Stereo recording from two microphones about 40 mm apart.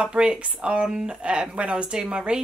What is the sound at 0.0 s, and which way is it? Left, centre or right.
A woman's voice, right.